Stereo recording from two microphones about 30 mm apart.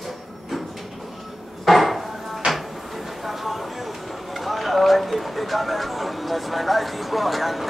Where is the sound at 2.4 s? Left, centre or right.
Right.